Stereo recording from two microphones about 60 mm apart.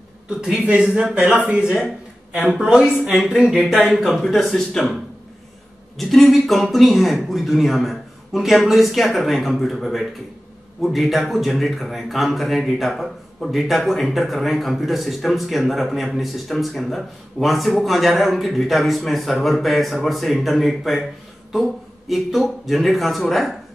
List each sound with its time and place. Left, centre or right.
0.4 s a man's voice: centre
2.6 s a man's voice: centre
5.9 s speech: centre